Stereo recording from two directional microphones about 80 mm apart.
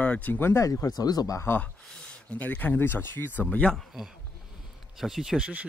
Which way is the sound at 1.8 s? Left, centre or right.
Centre.